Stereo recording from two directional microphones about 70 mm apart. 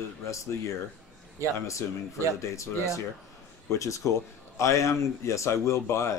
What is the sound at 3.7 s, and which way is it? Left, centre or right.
Speech, left.